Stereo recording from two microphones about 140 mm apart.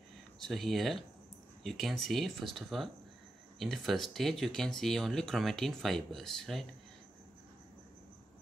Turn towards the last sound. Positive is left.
turn(degrees=0)  # may be behind; listen again after turning